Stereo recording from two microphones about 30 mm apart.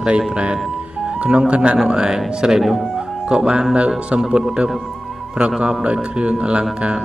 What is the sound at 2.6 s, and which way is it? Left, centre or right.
Speech, centre.